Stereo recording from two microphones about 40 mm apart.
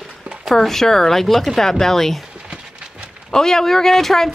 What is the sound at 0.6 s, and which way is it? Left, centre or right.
Speech, centre.